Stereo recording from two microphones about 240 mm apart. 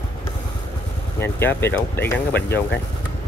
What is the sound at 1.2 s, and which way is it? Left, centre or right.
Speech, centre.